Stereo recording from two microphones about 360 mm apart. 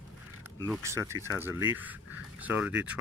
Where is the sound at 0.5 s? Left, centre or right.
Centre.